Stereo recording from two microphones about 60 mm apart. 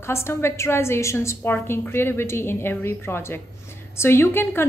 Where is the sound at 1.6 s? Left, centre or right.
Left.